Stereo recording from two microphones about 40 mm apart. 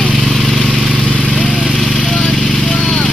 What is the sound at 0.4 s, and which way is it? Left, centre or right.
Vehicle, centre.